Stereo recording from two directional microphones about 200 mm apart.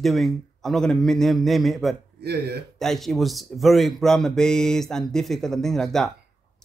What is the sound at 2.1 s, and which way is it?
Speech, 55° right (ahead or behind).